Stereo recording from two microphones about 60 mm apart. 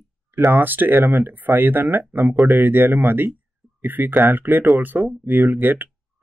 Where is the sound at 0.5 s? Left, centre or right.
Right.